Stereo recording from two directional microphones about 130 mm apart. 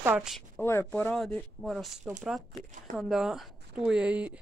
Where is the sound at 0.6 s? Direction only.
20° left (ahead or behind); by 4.4 s 10° right (ahead or behind).